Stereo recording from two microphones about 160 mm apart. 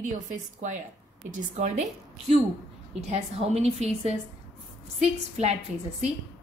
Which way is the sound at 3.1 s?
40° right (ahead or behind).